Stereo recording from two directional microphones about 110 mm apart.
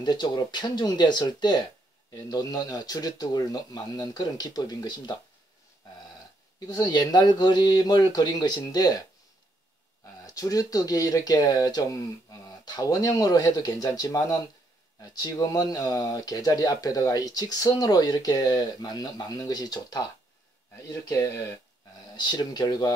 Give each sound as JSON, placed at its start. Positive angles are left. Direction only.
{"t": 0.0, "sound": "speech", "side_deg": 40}
{"t": 6.7, "sound": "speech", "side_deg": 40}
{"t": 10.2, "sound": "speech", "side_deg": 30}
{"t": 22.1, "sound": "speech", "side_deg": 40}